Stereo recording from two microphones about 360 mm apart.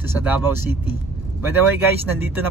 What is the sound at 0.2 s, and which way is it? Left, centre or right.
Speech, centre.